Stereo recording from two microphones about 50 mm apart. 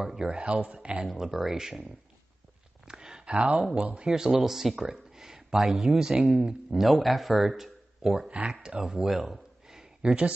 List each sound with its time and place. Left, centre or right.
0.0 s speech: centre
0.3 s a man's voice: right
1.0 s speech: centre
2.8 s a sound: centre
3.8 s a man's voice: right
4.1 s speech: centre